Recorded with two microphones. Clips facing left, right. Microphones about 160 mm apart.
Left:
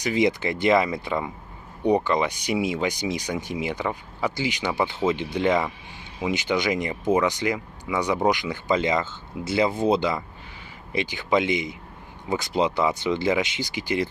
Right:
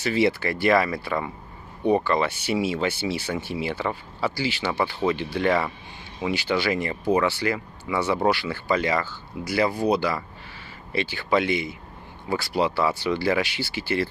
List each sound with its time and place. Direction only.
0.0 s speech: 15° left (ahead or behind)